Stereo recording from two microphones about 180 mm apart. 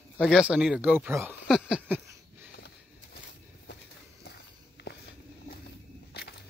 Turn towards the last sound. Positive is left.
turn(degrees=65)  # may be behind; listen again after turning